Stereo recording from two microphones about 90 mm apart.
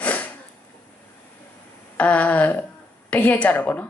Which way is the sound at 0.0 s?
15° left (ahead or behind).